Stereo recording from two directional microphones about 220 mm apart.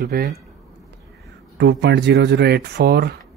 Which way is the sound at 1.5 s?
50° right (ahead or behind).